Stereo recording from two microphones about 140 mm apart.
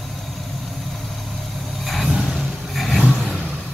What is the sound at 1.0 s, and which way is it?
Vehicle, centre (ahead or behind).